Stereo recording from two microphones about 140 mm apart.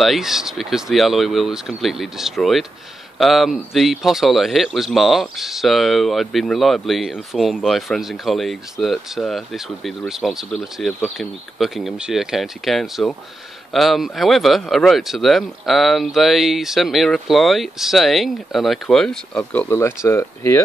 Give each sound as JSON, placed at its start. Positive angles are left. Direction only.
{"t": 0.0, "sound": "speech", "side_deg": 0}